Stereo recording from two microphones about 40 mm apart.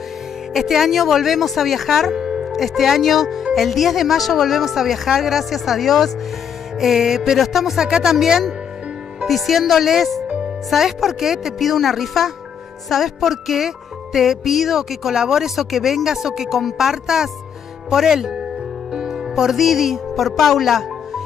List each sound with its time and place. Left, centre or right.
0.5 s speech: centre
2.1 s music: centre
2.5 s speech: centre
6.8 s music: centre
7.3 s speech: centre